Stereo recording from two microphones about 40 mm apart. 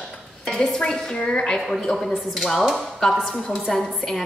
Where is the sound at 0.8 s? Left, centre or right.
Centre.